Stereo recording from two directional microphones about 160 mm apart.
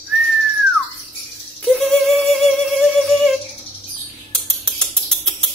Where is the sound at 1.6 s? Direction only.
Centre (ahead or behind).